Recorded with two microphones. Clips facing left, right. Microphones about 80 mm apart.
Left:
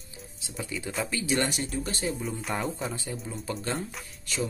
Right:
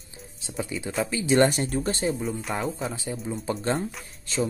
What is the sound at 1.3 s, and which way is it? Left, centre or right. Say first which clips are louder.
Speech: right 10 dB; right.